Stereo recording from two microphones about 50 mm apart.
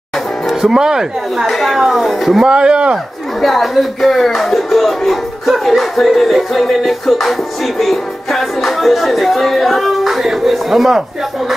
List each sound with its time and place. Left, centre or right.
0.5 s speech: centre
1.5 s speech: centre
2.4 s speech: centre
3.3 s speech: centre